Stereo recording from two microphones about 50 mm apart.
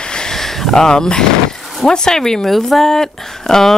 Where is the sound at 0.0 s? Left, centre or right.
Centre.